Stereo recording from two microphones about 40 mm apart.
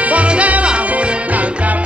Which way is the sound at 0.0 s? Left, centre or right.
Right.